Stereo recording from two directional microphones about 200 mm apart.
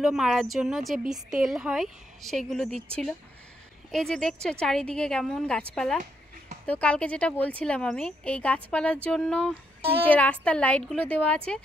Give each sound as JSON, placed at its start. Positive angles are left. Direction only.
{"t": 0.0, "sound": "a woman's voice", "side_deg": 0}